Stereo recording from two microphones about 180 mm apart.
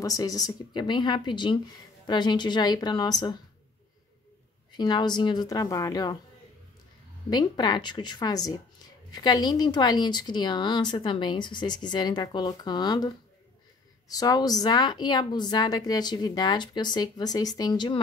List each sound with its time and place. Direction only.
0.0 s speech: 20° left (ahead or behind)
4.7 s speech: 25° left (ahead or behind)
7.2 s speech: 25° left (ahead or behind)